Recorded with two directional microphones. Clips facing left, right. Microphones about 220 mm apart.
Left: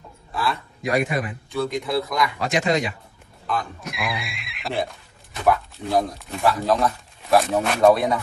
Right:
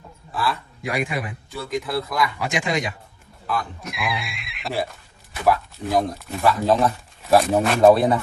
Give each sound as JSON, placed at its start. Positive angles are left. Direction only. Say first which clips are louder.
{"t": 0.8, "sound": "a man's voice", "louder": "left 3 dB", "side_deg": -10}
{"t": 3.4, "sound": "speech", "louder": "even", "side_deg": 0}
{"t": 7.9, "sound": "speech", "louder": "right 3 dB", "side_deg": -30}